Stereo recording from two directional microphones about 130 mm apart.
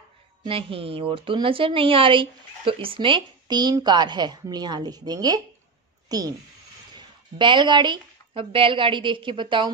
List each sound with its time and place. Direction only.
0.4 s a woman's voice: 45° right (ahead or behind)